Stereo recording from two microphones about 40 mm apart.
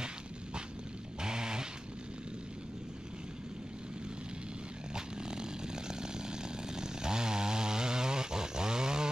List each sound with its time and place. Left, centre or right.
1.2 s a sound: centre
4.9 s vehicle: centre
6.5 s chainsaw: centre